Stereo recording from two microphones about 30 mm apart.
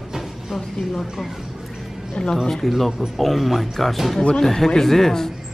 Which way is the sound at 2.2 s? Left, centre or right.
Left.